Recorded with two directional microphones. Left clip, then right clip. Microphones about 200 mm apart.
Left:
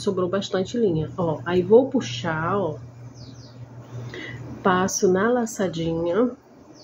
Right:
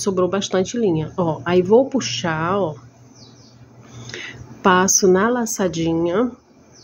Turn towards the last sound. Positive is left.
turn(degrees=-35)  # may be behind; listen again after turning